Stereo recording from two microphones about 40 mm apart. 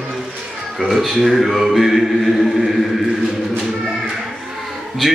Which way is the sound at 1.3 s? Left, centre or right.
Centre.